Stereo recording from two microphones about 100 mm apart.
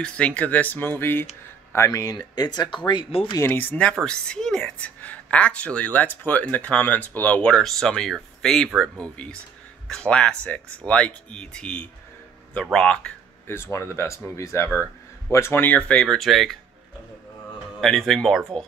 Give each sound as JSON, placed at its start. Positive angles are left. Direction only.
{"t": 0.0, "sound": "speech", "side_deg": 15}
{"t": 3.1, "sound": "speech", "side_deg": 70}
{"t": 3.3, "sound": "speech", "side_deg": 20}
{"t": 13.5, "sound": "speech", "side_deg": 25}
{"t": 17.7, "sound": "speech", "side_deg": 5}